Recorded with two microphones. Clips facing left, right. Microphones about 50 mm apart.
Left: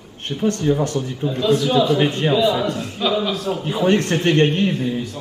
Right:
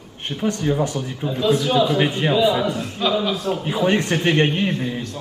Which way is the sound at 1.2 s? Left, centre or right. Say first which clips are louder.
Left 1 dB; centre.